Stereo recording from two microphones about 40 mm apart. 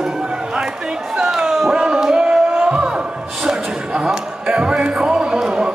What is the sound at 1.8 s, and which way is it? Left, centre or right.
Music, centre.